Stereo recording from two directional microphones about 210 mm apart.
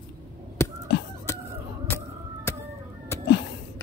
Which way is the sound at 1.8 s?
10° left (ahead or behind).